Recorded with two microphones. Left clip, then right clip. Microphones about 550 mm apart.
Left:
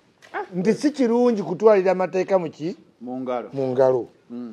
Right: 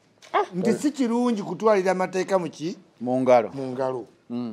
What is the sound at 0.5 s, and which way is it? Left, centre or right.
Speech, centre.